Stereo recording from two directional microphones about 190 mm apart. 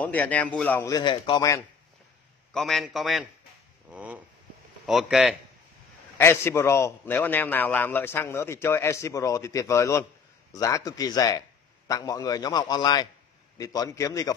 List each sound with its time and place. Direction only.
0.0 s a man's voice: 10° left (ahead or behind)
2.5 s a man's voice: centre (ahead or behind)
6.1 s a man's voice: 10° left (ahead or behind)